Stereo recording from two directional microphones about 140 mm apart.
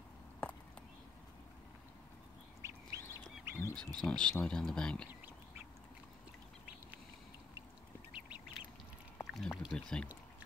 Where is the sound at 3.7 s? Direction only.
5° left (ahead or behind).